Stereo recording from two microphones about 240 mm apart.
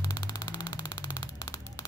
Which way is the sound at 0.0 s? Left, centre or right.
Centre.